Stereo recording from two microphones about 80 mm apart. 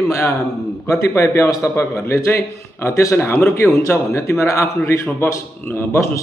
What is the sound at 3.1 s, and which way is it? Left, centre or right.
A man's voice, left.